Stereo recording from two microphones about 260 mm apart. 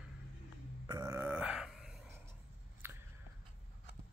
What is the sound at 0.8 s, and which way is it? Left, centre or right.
Burping, centre.